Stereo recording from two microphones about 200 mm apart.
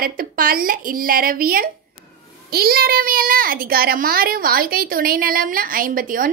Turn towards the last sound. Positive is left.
turn(degrees=-45)  # may be behind; listen again after turning